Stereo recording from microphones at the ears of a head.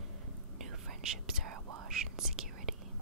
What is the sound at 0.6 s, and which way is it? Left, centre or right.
Whispering, right.